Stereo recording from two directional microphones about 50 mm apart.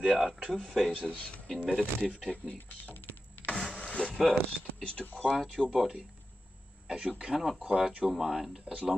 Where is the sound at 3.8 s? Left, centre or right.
Centre.